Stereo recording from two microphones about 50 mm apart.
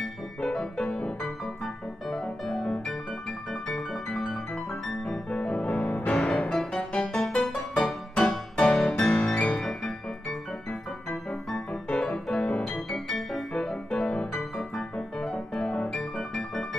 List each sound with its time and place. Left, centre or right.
0.4 s music: centre
1.4 s piano: centre
5.0 s music: centre
5.7 s music: left
6.0 s music: centre
7.5 s music: centre
9.1 s piano: centre
9.6 s music: centre
10.7 s music: left
14.6 s piano: centre